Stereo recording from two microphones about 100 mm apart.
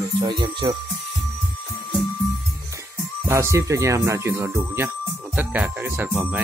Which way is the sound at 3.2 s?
30° right (ahead or behind).